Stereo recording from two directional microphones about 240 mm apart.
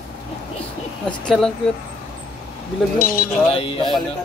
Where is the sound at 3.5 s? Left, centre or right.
Left.